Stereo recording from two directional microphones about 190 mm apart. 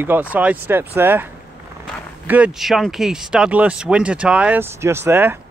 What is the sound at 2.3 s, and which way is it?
Speech, 5° right (ahead or behind).